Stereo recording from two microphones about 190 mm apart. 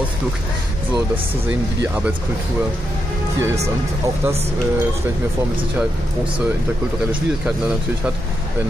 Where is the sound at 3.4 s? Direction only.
15° right (ahead or behind).